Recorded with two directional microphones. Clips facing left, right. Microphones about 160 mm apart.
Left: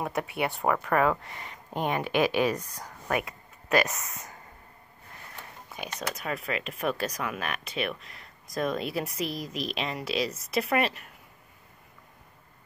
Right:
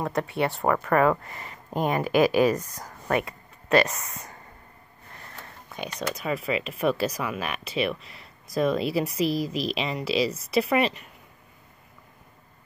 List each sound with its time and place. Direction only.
0.0 s speech: 10° left (ahead or behind)
1.7 s speech: 40° right (ahead or behind)
3.1 s speech: 5° left (ahead or behind)
5.7 s speech: 5° left (ahead or behind)